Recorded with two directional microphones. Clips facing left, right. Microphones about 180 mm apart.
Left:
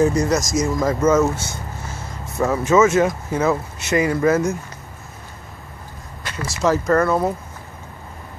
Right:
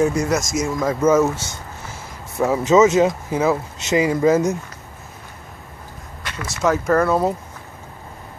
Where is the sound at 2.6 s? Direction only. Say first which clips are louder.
Right 2 dB; 20° right (ahead or behind).